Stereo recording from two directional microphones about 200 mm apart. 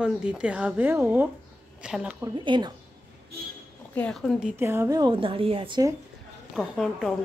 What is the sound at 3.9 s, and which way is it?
A woman's voice, 5° left (ahead or behind).